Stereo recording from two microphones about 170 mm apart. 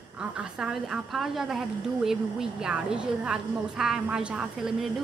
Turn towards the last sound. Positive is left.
turn(degrees=-5)  # may be behind; listen again after turning